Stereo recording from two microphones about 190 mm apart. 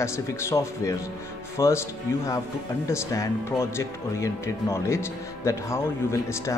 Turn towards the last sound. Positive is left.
turn(degrees=15)  # may be behind; listen again after turning